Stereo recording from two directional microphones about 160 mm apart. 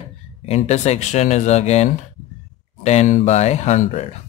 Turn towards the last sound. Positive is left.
turn(degrees=45)  # may be behind; listen again after turning